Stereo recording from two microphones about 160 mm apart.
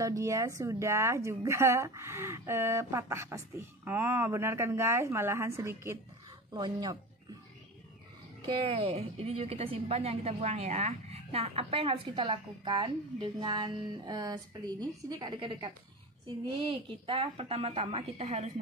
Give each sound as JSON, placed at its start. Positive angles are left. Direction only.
{"t": 0.0, "sound": "speech", "side_deg": -20}
{"t": 8.6, "sound": "a woman's voice", "side_deg": -40}